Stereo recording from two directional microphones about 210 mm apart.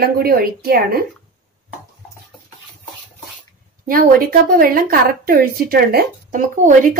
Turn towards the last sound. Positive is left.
turn(degrees=-40)  # may be behind; listen again after turning